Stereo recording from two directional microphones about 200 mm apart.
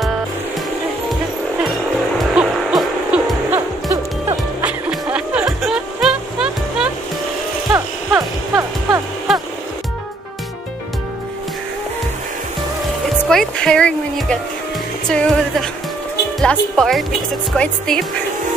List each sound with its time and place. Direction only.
1.6 s music: centre (ahead or behind)
8.2 s music: 15° right (ahead or behind)
9.3 s music: centre (ahead or behind)
13.3 s music: 5° left (ahead or behind)
16.3 s speech: 5° left (ahead or behind)